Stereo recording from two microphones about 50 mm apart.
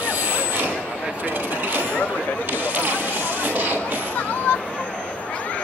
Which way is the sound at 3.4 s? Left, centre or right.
Right.